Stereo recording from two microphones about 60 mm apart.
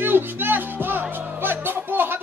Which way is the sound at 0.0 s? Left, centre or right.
Right.